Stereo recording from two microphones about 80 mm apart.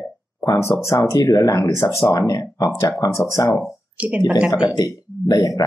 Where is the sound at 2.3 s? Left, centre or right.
Left.